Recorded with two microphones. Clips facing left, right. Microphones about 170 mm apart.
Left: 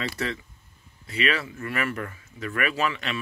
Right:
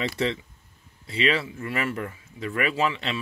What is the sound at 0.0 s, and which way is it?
Speech, 25° right (ahead or behind).